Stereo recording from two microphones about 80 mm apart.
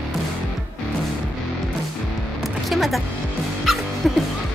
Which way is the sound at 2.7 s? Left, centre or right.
Centre.